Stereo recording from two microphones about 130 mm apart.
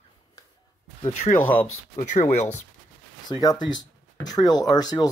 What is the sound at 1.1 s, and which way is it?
Speech, 80° left.